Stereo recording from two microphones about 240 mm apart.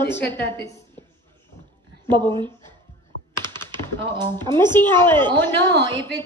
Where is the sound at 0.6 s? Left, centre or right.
Centre.